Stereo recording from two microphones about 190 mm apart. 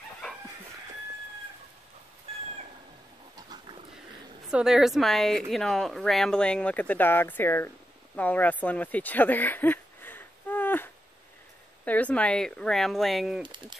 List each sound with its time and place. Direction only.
3.3 s pig: 20° right (ahead or behind)
4.5 s speech: 5° right (ahead or behind)
13.4 s speech: 25° right (ahead or behind)